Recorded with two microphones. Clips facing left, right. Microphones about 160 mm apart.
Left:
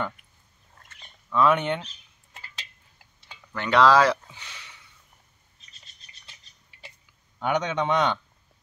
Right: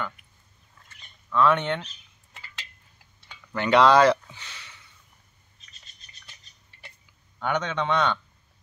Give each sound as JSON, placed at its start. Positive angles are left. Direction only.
{"t": 1.3, "sound": "a man's voice", "side_deg": 10}
{"t": 3.5, "sound": "speech", "side_deg": 0}
{"t": 4.4, "sound": "a sound", "side_deg": 15}
{"t": 7.3, "sound": "a man's voice", "side_deg": 15}